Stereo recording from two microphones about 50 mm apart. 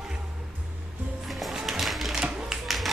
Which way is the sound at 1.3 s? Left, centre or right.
Centre.